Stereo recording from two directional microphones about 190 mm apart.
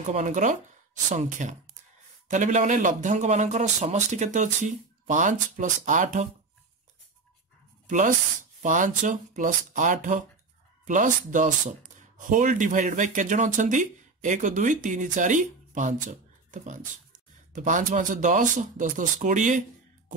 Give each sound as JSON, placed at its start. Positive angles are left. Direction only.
{"t": 0.1, "sound": "speech", "side_deg": -40}
{"t": 7.9, "sound": "speech", "side_deg": -40}